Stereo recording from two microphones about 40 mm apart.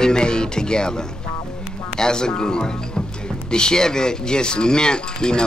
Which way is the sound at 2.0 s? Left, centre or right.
Centre.